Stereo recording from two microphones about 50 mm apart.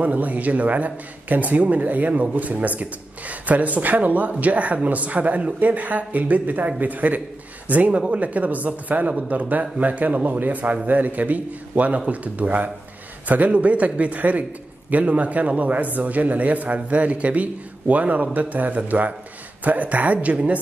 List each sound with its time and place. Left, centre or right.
0.0 s a man's voice: right